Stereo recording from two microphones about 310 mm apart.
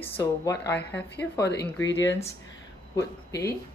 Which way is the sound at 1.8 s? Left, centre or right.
Left.